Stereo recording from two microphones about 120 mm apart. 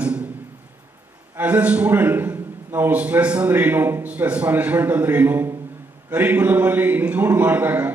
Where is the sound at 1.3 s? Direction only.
15° right (ahead or behind).